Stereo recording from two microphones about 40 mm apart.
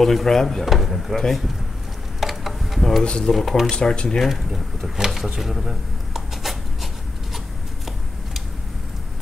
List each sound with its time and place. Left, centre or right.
0.0 s speech: centre
0.7 s speech: centre
1.1 s speech: centre
2.1 s a sound: centre
3.0 s speech: left
3.3 s speech: centre
3.7 s speech: left
4.2 s speech: centre
4.9 s a sound: centre